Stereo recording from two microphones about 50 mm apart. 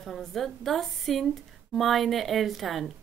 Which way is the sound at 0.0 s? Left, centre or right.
Centre.